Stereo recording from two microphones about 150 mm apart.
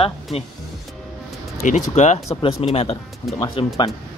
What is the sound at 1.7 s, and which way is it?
Speech, 50° left (ahead or behind).